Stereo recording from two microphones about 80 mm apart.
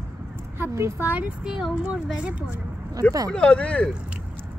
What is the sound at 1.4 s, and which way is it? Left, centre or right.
Speech, centre.